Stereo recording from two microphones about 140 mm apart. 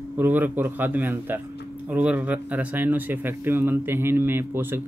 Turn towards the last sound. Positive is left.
turn(degrees=-15)  # may be behind; listen again after turning